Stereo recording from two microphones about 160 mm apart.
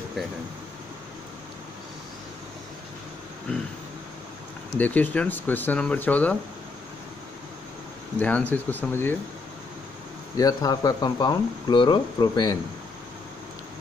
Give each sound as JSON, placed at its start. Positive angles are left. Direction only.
{"t": 4.7, "sound": "speech", "side_deg": 10}
{"t": 8.2, "sound": "speech", "side_deg": 10}
{"t": 10.3, "sound": "speech", "side_deg": 25}